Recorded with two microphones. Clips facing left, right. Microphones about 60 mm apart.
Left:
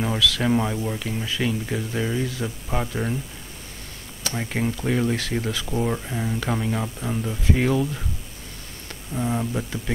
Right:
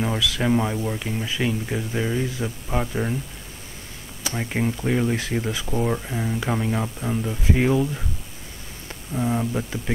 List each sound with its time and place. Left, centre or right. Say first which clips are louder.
0.0 s speech: left 1 dB; centre
4.5 s speech: right 1 dB; centre
5.5 s speech: right 1 dB; centre
5.8 s speech: right 1 dB; centre
9.1 s speech: right 1 dB; centre